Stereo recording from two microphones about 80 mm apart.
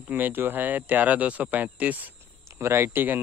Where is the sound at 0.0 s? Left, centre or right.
Right.